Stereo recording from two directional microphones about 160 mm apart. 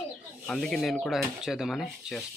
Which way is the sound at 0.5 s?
5° left (ahead or behind).